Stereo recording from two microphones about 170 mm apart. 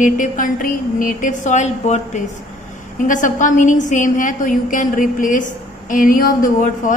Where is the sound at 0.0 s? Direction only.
50° left (ahead or behind).